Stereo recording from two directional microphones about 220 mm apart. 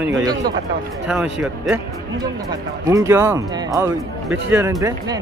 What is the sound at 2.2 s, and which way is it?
Speech, 15° right (ahead or behind).